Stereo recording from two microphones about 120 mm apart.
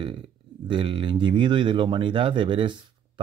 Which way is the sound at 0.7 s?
45° right (ahead or behind).